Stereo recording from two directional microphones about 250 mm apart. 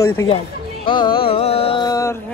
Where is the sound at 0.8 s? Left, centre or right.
Centre.